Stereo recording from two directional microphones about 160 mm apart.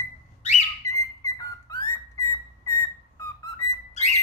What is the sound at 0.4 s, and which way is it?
Bird, 40° left (ahead or behind).